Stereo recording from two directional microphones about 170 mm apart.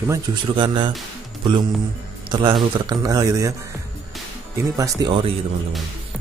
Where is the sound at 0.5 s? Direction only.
30° right (ahead or behind).